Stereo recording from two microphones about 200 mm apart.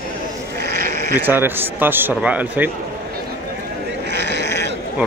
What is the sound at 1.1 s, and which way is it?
Speech, 10° right (ahead or behind).